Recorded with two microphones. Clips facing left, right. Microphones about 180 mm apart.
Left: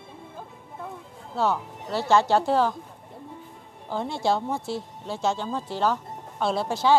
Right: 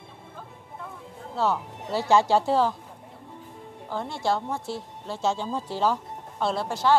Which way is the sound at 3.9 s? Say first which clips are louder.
Left 2 dB; 15° left (ahead or behind).